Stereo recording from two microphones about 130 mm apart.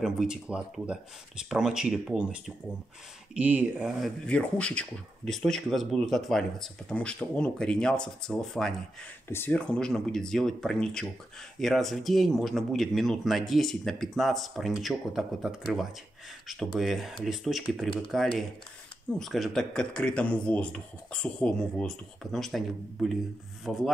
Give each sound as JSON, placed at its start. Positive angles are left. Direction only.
{"t": 0.0, "sound": "speech", "side_deg": -5}
{"t": 4.0, "sound": "speech", "side_deg": 10}
{"t": 9.3, "sound": "speech", "side_deg": 15}